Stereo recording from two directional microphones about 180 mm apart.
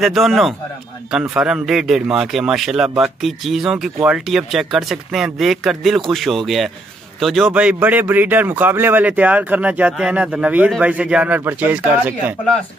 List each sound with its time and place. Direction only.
0.0 s a man's voice: centre (ahead or behind)